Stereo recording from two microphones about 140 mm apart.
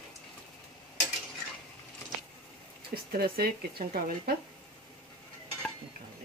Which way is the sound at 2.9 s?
90° right.